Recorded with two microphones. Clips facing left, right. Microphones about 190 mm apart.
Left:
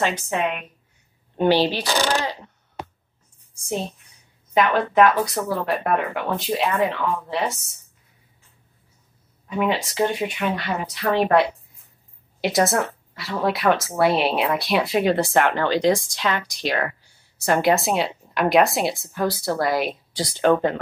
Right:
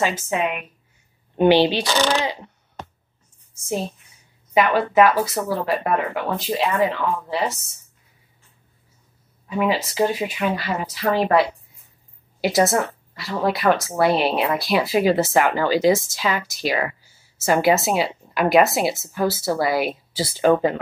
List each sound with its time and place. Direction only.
0.0 s a woman's voice: 5° right (ahead or behind)
1.3 s speech: 15° right (ahead or behind)
4.6 s a woman's voice: 5° right (ahead or behind)
9.5 s a woman's voice: centre (ahead or behind)